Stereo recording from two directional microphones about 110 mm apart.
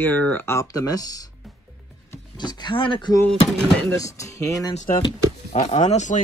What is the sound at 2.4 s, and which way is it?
Speech, 40° left (ahead or behind).